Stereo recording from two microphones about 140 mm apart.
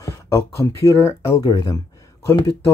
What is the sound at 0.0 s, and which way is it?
Speech, 20° left (ahead or behind).